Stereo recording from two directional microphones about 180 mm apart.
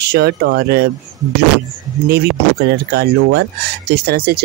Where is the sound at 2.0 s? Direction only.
65° right (ahead or behind).